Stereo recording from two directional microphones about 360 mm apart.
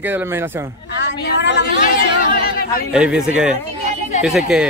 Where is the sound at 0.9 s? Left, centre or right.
Left.